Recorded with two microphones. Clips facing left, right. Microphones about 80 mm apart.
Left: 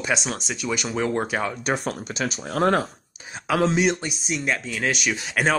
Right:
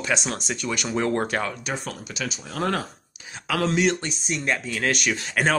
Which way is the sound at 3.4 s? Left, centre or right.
Left.